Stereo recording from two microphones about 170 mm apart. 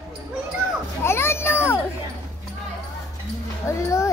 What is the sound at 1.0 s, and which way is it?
Speech, 15° left (ahead or behind).